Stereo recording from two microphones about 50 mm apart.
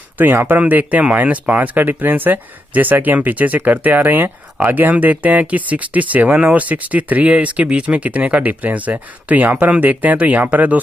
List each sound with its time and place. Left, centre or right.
0.2 s speech: right